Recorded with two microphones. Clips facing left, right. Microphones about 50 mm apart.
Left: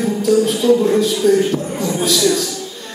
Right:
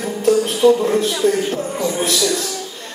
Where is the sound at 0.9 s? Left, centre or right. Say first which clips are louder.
Left 3 dB; right.